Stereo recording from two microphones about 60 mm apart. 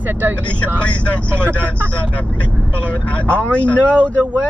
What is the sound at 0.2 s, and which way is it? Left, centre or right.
Speech, right.